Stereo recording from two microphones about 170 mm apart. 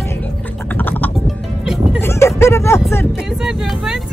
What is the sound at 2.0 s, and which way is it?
Speech, 15° left (ahead or behind).